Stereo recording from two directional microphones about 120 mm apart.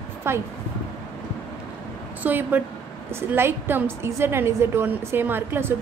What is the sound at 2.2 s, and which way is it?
A woman's voice, 15° right (ahead or behind).